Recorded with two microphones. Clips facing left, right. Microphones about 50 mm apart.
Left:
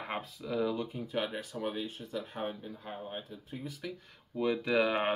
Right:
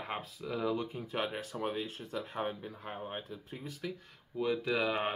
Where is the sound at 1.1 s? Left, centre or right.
Right.